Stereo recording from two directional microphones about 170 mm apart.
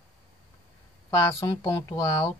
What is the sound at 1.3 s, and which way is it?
Speech, 15° left (ahead or behind).